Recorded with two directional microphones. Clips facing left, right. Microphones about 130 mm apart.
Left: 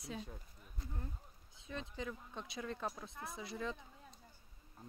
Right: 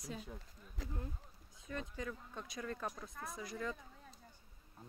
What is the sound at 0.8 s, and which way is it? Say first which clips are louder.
Speech: right 4 dB; 90° right.